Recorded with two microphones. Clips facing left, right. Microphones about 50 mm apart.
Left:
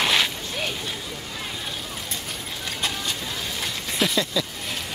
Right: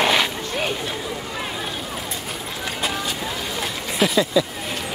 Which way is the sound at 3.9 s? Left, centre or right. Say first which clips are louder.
Right 6 dB; centre.